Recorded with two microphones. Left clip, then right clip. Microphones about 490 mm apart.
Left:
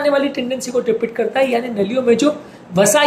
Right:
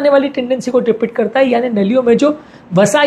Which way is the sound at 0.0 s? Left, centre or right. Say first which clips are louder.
Right 5 dB; right.